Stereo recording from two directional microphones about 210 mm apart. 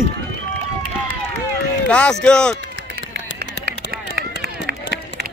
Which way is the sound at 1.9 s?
5° left (ahead or behind).